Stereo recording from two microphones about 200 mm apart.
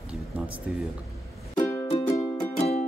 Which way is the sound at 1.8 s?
25° left (ahead or behind).